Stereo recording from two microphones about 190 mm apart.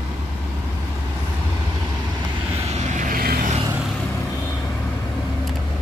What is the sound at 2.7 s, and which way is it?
Vehicle, 40° right (ahead or behind).